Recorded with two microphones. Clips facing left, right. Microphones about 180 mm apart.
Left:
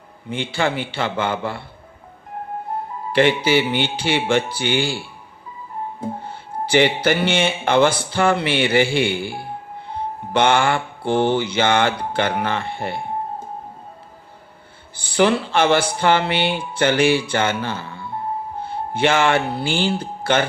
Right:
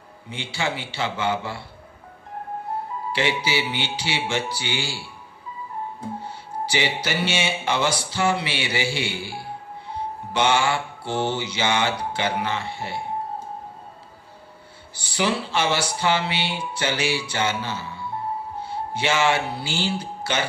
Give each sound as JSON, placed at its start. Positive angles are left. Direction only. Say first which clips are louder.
{"t": 0.3, "sound": "speech", "louder": "left 6 dB", "side_deg": 55}
{"t": 3.1, "sound": "speech", "louder": "left 9 dB", "side_deg": 55}
{"t": 6.2, "sound": "speech", "louder": "left 2 dB", "side_deg": 55}
{"t": 15.0, "sound": "speech", "louder": "left 7 dB", "side_deg": 55}